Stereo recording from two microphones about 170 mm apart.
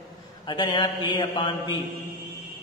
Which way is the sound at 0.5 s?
25° left (ahead or behind).